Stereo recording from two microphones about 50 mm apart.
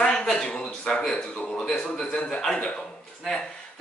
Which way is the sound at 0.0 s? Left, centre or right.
Centre.